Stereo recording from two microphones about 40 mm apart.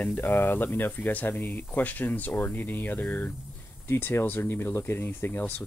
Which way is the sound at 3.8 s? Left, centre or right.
Left.